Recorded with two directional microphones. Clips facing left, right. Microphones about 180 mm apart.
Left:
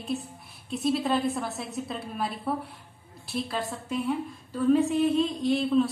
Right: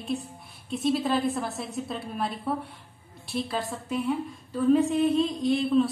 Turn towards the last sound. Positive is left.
turn(degrees=0)  # may be behind; listen again after turning